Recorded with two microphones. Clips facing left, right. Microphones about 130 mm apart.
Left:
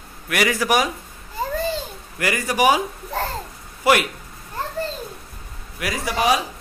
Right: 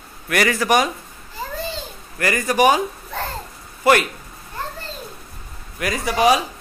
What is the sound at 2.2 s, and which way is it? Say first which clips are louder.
Speech: right 2 dB; 10° left (ahead or behind).